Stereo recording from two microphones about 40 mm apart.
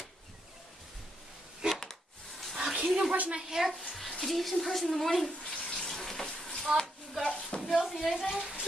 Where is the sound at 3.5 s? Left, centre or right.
Centre.